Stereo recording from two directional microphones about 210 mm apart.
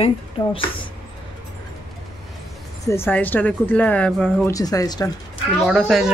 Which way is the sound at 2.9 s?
10° left (ahead or behind).